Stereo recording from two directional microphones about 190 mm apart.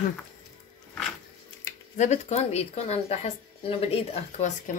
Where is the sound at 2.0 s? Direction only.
35° left (ahead or behind).